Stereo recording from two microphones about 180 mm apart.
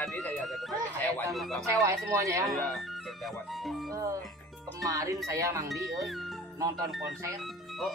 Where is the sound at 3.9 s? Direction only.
20° right (ahead or behind).